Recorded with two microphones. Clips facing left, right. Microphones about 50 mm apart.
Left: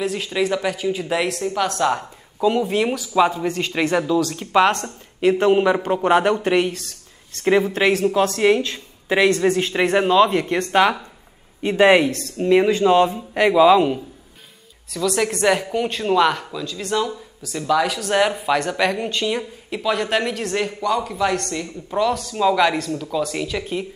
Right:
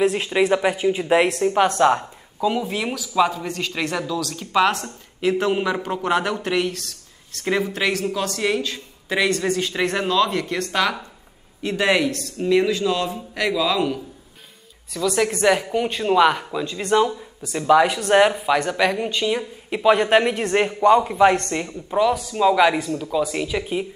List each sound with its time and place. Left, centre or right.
0.0 s speech: right
2.4 s a man's voice: centre; by 14.0 s left
14.9 s speech: centre
16.5 s speech: right
18.3 s speech: centre
19.7 s speech: right
21.9 s speech: centre